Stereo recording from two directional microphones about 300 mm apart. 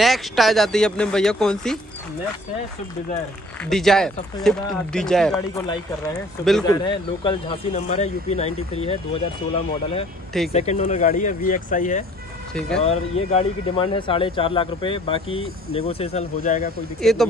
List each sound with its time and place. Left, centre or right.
0.0 s speech: centre
3.6 s speech: centre
6.6 s speech: centre
10.5 s speech: left
12.5 s speech: centre
12.8 s speech: left
17.0 s speech: centre